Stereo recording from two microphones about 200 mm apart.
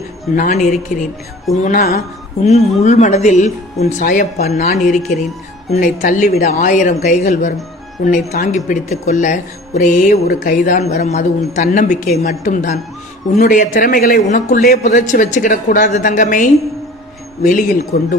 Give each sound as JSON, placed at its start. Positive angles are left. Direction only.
{"t": 0.4, "sound": "speech", "side_deg": 40}
{"t": 1.6, "sound": "music", "side_deg": 45}
{"t": 2.4, "sound": "speech", "side_deg": 35}